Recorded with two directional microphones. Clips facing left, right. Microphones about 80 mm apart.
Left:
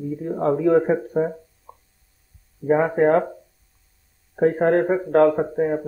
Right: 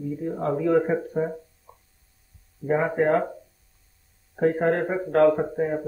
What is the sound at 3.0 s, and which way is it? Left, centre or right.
Speech, left.